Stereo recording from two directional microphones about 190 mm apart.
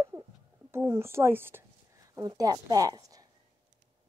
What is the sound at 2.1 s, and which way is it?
A woman's voice, 20° right (ahead or behind).